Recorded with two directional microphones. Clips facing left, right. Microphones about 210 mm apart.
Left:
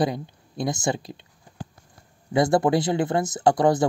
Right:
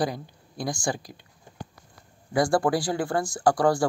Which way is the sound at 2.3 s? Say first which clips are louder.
Left 3 dB; 20° left (ahead or behind).